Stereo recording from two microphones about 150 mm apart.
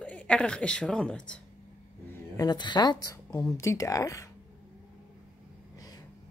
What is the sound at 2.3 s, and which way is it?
Speech, 30° left (ahead or behind).